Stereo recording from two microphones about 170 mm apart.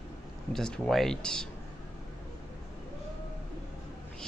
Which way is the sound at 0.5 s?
5° left (ahead or behind).